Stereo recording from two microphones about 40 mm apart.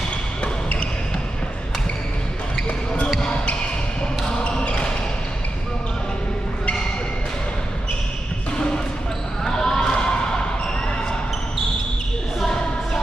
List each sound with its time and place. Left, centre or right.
0.4 s basketball bounce: left
4.4 s basketball bounce: left
8.5 s basketball bounce: left